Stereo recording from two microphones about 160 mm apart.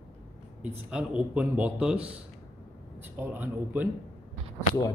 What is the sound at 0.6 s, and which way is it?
A man's voice, 5° right (ahead or behind).